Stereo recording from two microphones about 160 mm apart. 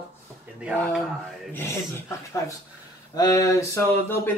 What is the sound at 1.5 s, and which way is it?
Speech, 15° left (ahead or behind).